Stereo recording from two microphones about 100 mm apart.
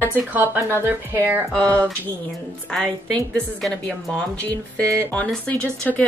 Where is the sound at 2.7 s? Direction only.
5° left (ahead or behind).